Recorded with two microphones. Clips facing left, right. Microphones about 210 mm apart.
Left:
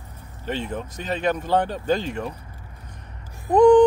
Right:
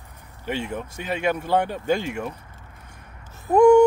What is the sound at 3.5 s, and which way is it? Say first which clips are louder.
Speech: even; 10° right (ahead or behind).